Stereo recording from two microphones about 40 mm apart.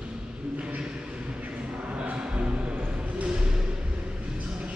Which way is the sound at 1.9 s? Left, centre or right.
Right.